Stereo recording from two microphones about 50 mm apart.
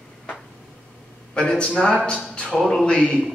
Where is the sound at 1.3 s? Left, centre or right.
Centre.